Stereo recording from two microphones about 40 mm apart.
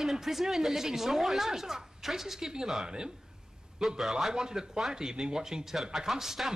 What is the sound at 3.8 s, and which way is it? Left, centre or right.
A woman's voice, centre.